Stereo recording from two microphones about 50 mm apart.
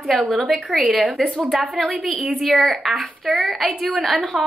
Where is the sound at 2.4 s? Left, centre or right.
Centre.